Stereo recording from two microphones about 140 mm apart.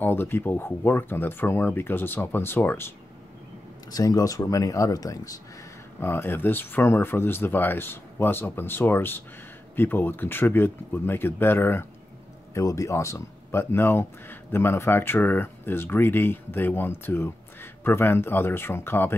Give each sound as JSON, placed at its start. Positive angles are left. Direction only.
{"t": 0.0, "sound": "speech", "side_deg": 15}
{"t": 3.9, "sound": "speech", "side_deg": 25}